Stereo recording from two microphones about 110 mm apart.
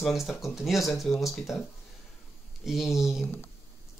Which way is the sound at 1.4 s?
25° left (ahead or behind).